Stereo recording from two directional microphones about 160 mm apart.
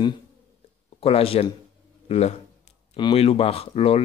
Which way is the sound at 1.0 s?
35° left (ahead or behind).